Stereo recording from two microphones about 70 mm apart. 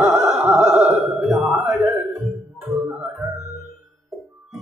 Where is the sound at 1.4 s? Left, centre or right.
Centre.